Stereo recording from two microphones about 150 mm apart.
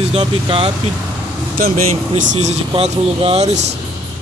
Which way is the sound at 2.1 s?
50° right (ahead or behind).